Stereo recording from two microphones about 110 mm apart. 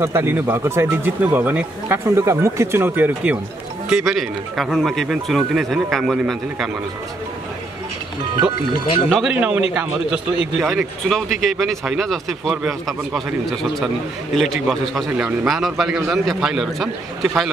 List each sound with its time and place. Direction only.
0.0 s speech: 25° right (ahead or behind)
3.9 s speech: centre (ahead or behind)
9.1 s a man's voice: 10° right (ahead or behind)
10.6 s speech: centre (ahead or behind)
15.0 s a man's voice: 10° right (ahead or behind)